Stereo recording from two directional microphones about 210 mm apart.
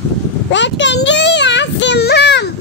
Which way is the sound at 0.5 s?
60° left (ahead or behind).